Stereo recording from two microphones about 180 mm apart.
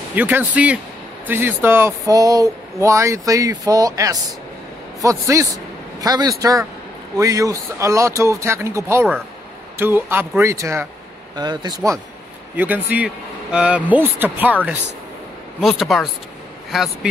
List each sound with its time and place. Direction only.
0.1 s speech: 10° right (ahead or behind)
12.5 s speech: 10° right (ahead or behind)